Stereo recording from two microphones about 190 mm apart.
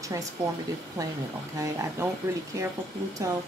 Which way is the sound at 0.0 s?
15° right (ahead or behind).